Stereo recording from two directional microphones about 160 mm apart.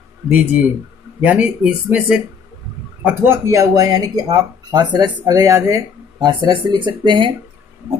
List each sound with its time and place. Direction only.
0.3 s speech: 10° right (ahead or behind); by 7.3 s 30° right (ahead or behind)